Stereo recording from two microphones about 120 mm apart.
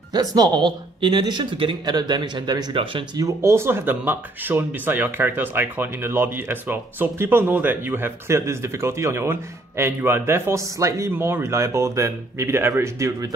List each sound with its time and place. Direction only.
0.1 s speech: 30° right (ahead or behind)
3.2 s speech: 25° right (ahead or behind)